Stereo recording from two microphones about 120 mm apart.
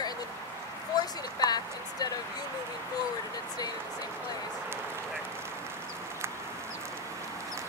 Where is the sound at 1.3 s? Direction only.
35° left (ahead or behind).